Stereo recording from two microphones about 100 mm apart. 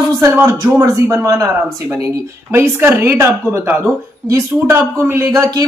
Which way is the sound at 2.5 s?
25° right (ahead or behind).